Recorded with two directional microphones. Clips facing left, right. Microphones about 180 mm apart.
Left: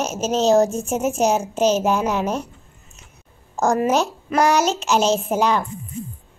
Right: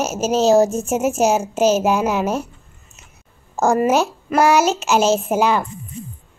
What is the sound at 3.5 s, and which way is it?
A child's voice, 5° right (ahead or behind).